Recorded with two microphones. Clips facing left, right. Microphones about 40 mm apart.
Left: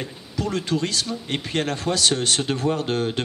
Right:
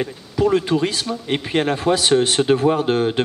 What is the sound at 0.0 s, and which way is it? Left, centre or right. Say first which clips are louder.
A man's voice: right 9 dB; right.